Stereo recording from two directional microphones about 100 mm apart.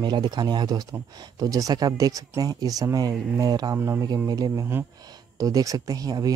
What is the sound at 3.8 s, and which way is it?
Speech, 25° right (ahead or behind).